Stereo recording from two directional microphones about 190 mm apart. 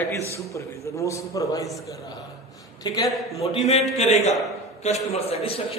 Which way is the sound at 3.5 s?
30° left (ahead or behind).